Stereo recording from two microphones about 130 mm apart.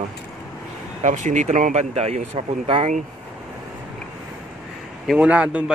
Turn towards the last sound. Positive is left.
turn(degrees=-10)  # may be behind; listen again after turning